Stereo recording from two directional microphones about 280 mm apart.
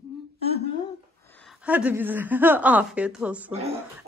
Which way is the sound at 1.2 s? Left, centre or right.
Centre.